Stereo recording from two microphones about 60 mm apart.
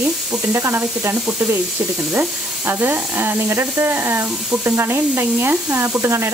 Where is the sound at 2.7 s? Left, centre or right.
Right.